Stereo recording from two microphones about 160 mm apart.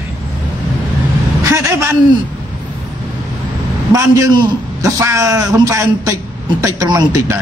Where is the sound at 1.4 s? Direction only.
20° right (ahead or behind).